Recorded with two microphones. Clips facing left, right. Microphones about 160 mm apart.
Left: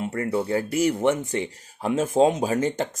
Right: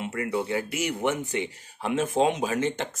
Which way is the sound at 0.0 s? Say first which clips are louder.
Left 3 dB; 35° left (ahead or behind).